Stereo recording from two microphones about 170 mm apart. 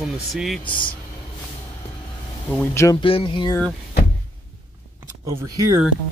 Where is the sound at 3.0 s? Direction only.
30° left (ahead or behind).